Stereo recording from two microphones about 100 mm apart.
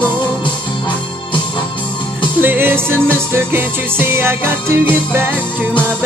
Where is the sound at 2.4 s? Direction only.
20° right (ahead or behind).